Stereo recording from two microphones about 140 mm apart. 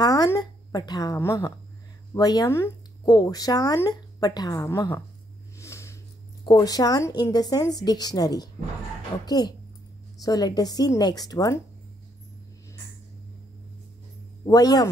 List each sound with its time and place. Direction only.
0.0 s a woman's voice: 25° left (ahead or behind)
5.6 s a sound: 20° left (ahead or behind)
6.4 s speech: 25° left (ahead or behind)
14.4 s speech: 25° left (ahead or behind)